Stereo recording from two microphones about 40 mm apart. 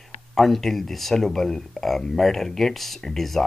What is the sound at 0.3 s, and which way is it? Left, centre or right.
Speech, centre.